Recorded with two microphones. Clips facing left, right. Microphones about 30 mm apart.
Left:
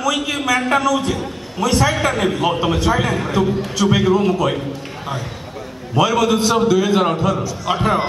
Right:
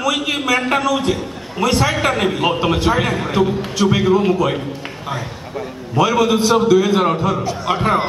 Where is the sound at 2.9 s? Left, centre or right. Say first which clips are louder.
Right 1 dB; centre.